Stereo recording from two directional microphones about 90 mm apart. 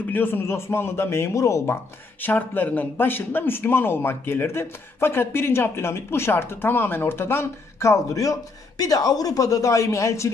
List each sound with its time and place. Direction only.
0.0 s a man's voice: 20° left (ahead or behind)
2.2 s a man's voice: 20° left (ahead or behind)